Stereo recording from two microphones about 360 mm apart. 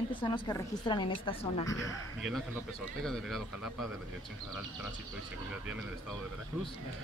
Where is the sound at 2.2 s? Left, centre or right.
Centre.